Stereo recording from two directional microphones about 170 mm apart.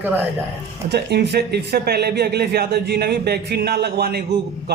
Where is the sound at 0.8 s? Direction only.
75° right (ahead or behind).